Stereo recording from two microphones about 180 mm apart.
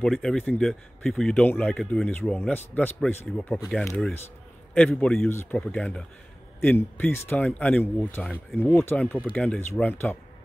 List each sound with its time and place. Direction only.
0.0 s speech: 5° left (ahead or behind)